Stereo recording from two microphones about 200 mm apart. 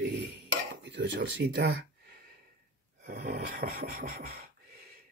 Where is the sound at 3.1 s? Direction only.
50° right (ahead or behind).